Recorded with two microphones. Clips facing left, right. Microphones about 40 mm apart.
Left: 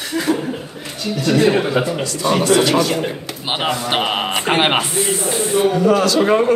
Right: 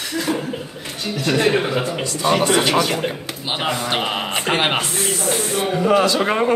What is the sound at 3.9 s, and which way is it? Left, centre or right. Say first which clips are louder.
Speech: left 3 dB; centre.